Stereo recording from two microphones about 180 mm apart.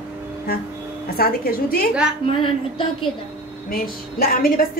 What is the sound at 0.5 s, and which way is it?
A woman's voice, 60° left (ahead or behind).